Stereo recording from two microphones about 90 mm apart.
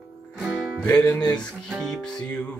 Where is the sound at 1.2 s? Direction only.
5° left (ahead or behind).